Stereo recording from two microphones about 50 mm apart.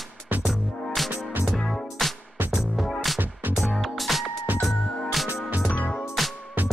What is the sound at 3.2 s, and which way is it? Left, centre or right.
Music, right.